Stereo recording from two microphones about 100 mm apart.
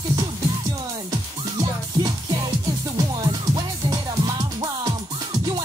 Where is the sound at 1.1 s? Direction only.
40° right (ahead or behind).